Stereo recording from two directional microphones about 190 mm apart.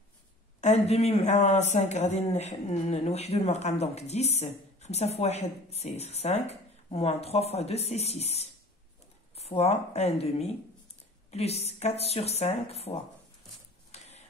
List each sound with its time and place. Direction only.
0.6 s speech: 35° left (ahead or behind)
13.9 s printer: 35° left (ahead or behind)